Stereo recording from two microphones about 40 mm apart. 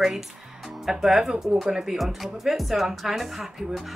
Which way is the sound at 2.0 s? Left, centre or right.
Centre.